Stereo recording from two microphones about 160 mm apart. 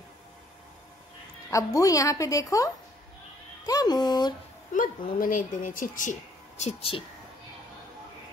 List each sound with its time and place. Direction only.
1.5 s a woman's voice: 20° left (ahead or behind)
4.7 s speech: 55° left (ahead or behind)